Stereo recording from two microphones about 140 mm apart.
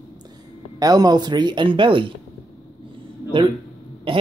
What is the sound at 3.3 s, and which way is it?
Speech, 35° right (ahead or behind).